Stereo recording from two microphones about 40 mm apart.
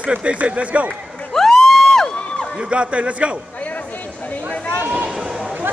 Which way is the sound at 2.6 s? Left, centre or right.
Right.